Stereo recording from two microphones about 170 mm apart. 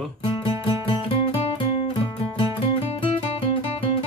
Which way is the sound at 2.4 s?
35° left (ahead or behind).